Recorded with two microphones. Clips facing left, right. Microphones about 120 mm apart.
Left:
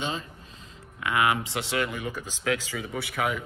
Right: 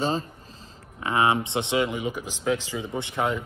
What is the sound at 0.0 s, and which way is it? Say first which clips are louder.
Speech: right 6 dB; 35° right (ahead or behind).